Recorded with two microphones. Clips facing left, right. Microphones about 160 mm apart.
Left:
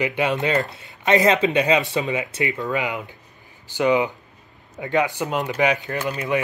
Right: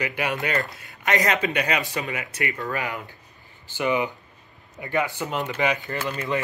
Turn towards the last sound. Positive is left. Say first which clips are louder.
# left 4 dB
turn(degrees=20)  # may be behind; listen again after turning